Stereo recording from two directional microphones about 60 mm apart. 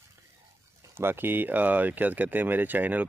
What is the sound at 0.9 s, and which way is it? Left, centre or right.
Speech, right.